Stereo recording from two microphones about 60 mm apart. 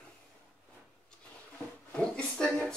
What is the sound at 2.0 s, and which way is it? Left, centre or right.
Speech, centre.